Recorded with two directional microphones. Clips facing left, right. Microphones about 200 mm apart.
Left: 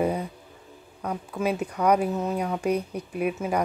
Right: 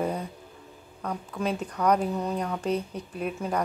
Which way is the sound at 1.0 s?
10° left (ahead or behind).